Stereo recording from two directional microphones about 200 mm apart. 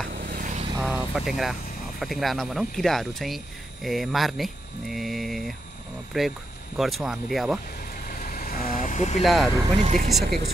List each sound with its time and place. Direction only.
0.1 s vehicle: 45° right (ahead or behind)
0.7 s speech: 5° right (ahead or behind)
8.0 s vehicle: 45° left (ahead or behind)
9.2 s speech: centre (ahead or behind)
9.8 s speech: 35° right (ahead or behind)